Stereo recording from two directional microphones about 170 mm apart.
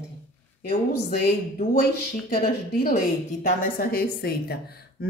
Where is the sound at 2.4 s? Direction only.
55° left (ahead or behind).